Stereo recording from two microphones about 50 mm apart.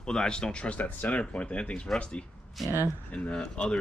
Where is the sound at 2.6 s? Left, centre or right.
Centre.